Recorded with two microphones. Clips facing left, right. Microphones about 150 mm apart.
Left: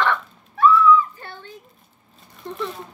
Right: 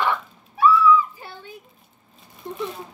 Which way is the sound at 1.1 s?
10° right (ahead or behind).